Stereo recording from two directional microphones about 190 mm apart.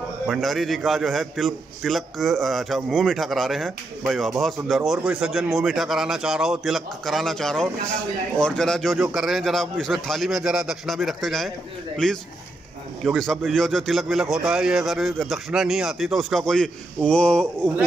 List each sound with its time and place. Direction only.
0.3 s a man's voice: centre (ahead or behind)